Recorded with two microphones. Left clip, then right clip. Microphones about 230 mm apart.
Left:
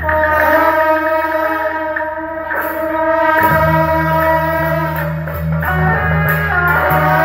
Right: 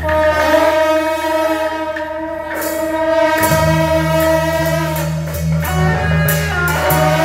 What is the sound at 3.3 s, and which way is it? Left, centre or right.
Music, right.